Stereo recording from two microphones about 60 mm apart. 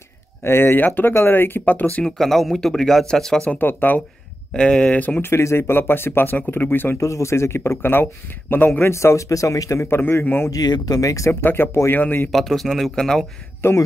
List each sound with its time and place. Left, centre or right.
0.4 s speech: left
2.0 s speech: centre
3.5 s speech: left
4.6 s speech: centre
5.2 s speech: left
7.0 s speech: left
8.9 s speech: left
9.8 s speech: left
10.5 s speech: left
11.4 s speech: left
12.3 s speech: centre
13.6 s speech: left